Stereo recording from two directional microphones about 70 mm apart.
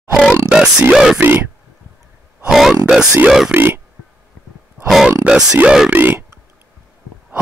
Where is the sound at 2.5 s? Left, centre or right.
Centre.